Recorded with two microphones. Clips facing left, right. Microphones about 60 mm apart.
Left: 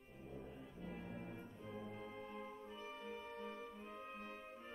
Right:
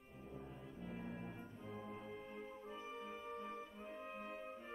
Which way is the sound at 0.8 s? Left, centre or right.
Centre.